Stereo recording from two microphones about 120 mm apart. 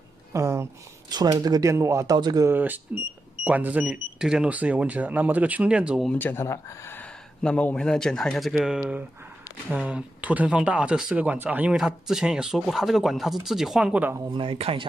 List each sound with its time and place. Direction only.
0.3 s a sound: 25° right (ahead or behind)
1.1 s speech: 35° right (ahead or behind)
2.1 s speech: 35° right (ahead or behind)
2.4 s speech: 15° right (ahead or behind)
6.1 s speech: 15° left (ahead or behind)
7.4 s speech: 10° left (ahead or behind); by 14.1 s 10° right (ahead or behind)
14.3 s speech: 50° right (ahead or behind)